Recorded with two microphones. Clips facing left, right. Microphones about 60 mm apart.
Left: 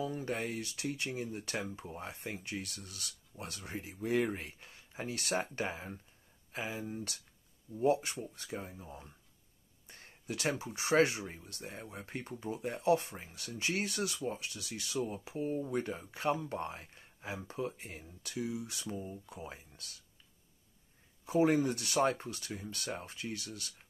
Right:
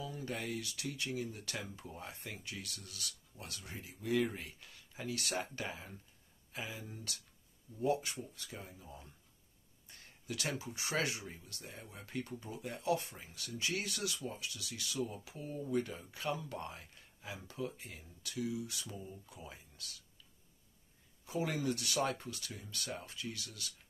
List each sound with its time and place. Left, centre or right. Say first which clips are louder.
0.0 s speech: left 5 dB; left
21.3 s speech: left 8 dB; left